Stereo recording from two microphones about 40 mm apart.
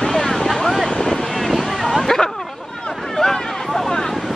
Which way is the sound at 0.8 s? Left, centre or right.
Centre.